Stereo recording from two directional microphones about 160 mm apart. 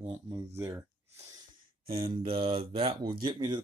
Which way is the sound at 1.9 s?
35° right (ahead or behind).